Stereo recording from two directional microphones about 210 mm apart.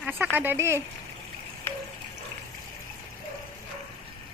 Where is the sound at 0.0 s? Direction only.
10° right (ahead or behind).